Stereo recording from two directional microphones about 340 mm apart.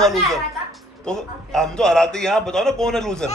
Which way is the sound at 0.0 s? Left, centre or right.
Centre.